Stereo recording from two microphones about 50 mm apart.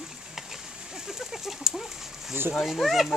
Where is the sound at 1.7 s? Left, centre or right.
Centre.